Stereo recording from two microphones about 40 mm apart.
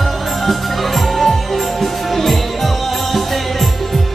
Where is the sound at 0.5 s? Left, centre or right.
Centre.